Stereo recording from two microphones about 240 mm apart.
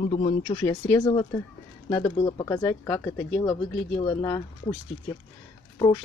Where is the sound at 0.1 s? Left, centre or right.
Left.